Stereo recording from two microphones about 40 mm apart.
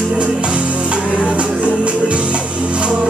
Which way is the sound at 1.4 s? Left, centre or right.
Right.